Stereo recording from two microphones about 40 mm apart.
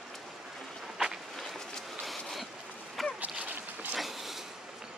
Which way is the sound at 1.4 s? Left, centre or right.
Centre.